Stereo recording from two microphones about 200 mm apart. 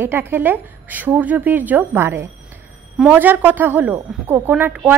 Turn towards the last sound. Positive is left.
turn(degrees=-10)  # may be behind; listen again after turning